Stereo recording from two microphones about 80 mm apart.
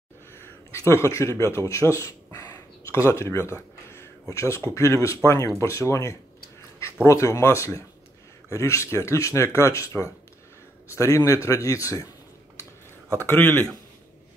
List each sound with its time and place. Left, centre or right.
0.3 s a man's voice: left
3.5 s a sound: left
4.7 s a man's voice: left
13.2 s speech: left